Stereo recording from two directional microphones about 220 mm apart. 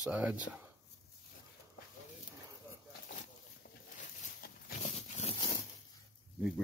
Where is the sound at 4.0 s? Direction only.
40° left (ahead or behind).